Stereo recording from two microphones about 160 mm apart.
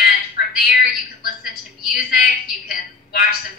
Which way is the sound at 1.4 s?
75° left (ahead or behind).